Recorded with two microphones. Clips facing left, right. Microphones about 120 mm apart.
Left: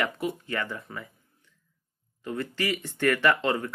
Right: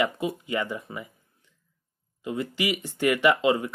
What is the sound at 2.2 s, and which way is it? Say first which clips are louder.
Speech: right 2 dB; 15° right (ahead or behind).